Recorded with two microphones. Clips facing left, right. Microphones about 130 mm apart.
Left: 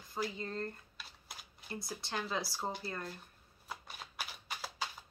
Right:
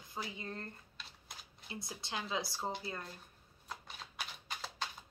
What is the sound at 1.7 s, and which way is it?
Speech, 20° right (ahead or behind).